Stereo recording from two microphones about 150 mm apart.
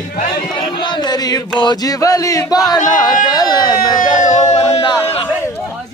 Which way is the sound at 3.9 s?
55° left (ahead or behind).